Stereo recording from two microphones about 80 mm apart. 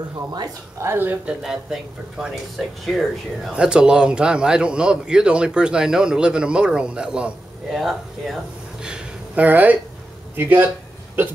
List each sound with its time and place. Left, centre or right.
0.7 s speech: right
1.4 s a man's voice: centre
3.5 s a man's voice: centre
8.8 s speech: centre